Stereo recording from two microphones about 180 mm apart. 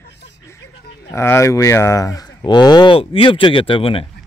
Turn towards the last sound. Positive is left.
turn(degrees=30)  # may be behind; listen again after turning